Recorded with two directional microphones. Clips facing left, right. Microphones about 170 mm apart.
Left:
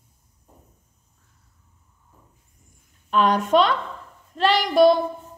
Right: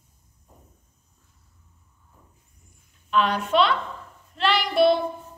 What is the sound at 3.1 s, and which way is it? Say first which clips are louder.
A woman's voice: left 3 dB; 40° left (ahead or behind).